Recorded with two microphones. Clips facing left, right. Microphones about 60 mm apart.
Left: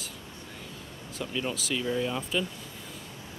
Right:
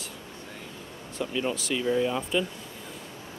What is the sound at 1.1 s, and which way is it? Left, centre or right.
Speech, centre.